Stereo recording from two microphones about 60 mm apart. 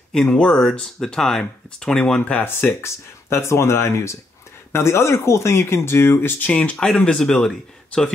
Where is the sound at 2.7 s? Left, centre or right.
Left.